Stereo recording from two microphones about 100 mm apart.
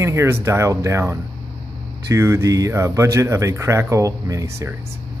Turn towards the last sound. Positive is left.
turn(degrees=-30)  # may be behind; listen again after turning